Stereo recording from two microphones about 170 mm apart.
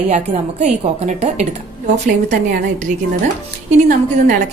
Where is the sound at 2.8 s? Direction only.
45° right (ahead or behind).